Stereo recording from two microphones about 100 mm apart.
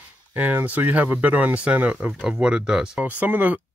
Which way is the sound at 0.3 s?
20° right (ahead or behind).